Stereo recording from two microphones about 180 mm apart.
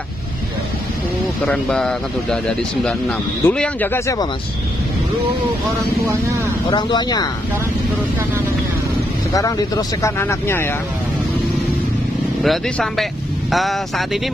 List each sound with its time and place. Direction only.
1.4 s speech: 5° left (ahead or behind)
6.7 s speech: 25° left (ahead or behind)
9.3 s speech: 20° left (ahead or behind)
12.4 s speech: 5° left (ahead or behind)